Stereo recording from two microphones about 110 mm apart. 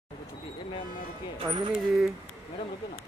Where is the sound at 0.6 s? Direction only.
45° left (ahead or behind).